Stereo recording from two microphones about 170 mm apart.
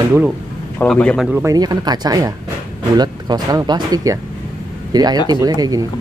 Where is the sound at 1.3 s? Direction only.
20° right (ahead or behind).